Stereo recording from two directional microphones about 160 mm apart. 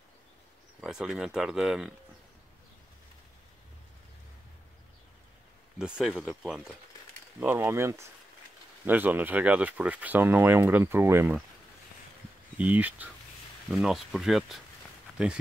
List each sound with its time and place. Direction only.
0.7 s speech: 5° right (ahead or behind)
5.8 s speech: 5° right (ahead or behind)
7.3 s speech: 15° right (ahead or behind)
12.5 s speech: 10° right (ahead or behind)